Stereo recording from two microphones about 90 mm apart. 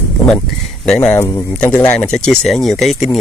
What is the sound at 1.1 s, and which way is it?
Speech, 35° left (ahead or behind).